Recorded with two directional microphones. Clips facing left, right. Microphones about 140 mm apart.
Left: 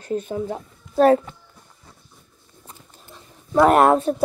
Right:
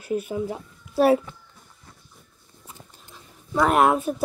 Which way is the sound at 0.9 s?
10° right (ahead or behind).